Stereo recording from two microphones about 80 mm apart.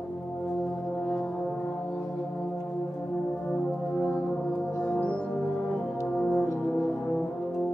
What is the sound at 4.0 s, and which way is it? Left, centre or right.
Brass instrument, centre.